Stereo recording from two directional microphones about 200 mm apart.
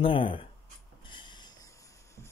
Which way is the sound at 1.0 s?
25° left (ahead or behind).